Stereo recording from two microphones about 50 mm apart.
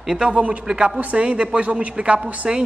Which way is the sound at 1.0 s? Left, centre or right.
Right.